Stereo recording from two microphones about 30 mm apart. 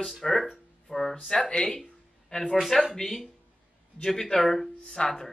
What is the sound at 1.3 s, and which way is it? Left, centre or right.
Speech, left.